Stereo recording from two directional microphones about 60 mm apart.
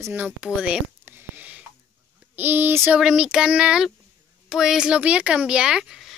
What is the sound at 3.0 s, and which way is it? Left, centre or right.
A woman's voice, centre.